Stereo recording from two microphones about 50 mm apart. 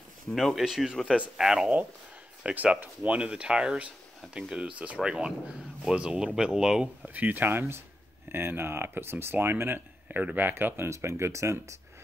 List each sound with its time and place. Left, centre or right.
0.3 s speech: centre
2.4 s speech: right
7.2 s speech: right
10.0 s speech: right
10.8 s speech: right